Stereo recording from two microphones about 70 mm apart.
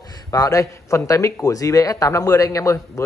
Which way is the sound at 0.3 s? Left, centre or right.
Left.